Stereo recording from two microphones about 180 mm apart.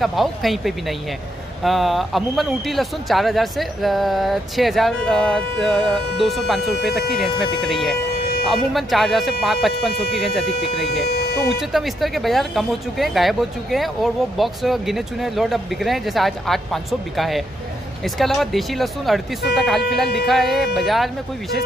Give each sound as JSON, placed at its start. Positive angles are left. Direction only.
{"t": 0.0, "sound": "speech", "side_deg": 0}
{"t": 10.9, "sound": "speech", "side_deg": 60}
{"t": 11.7, "sound": "speech", "side_deg": 0}